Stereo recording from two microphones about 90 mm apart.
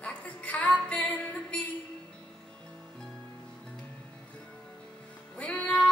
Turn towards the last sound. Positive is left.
turn(degrees=15)  # may be behind; listen again after turning